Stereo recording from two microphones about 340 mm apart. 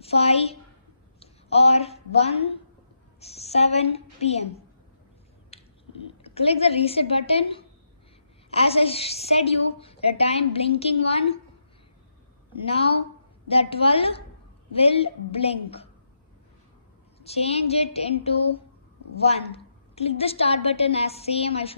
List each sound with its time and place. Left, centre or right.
0.0 s a woman's voice: centre
6.3 s a woman's voice: centre
12.6 s a woman's voice: centre
17.2 s a woman's voice: centre